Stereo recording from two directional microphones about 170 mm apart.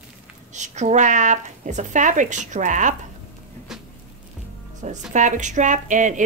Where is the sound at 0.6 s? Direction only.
45° right (ahead or behind).